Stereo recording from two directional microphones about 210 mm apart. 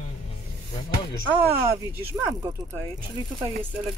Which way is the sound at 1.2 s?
10° right (ahead or behind).